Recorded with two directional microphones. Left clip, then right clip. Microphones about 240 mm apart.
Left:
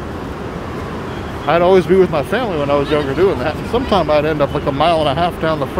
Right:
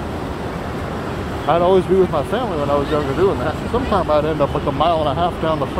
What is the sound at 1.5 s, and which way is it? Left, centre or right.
Speech, left.